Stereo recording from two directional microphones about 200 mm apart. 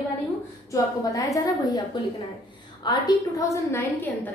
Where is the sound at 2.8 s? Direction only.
20° left (ahead or behind).